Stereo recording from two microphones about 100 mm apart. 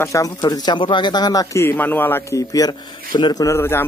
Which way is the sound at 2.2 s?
35° left (ahead or behind).